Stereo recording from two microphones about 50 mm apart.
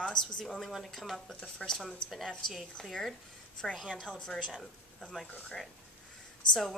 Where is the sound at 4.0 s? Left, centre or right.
Centre.